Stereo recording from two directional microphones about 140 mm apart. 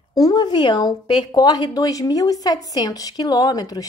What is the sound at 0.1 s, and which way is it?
A woman's voice, 25° left (ahead or behind).